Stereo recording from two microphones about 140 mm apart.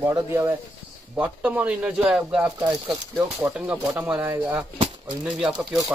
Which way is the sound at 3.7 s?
20° right (ahead or behind).